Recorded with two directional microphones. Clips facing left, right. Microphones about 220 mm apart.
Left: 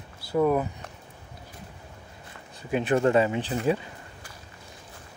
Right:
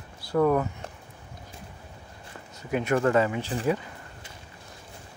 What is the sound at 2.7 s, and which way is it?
Speech, 30° left (ahead or behind).